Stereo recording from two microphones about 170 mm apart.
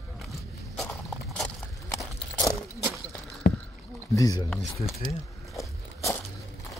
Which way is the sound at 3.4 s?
60° left (ahead or behind).